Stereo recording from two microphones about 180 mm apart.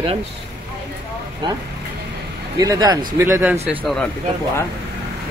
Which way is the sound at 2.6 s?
20° right (ahead or behind).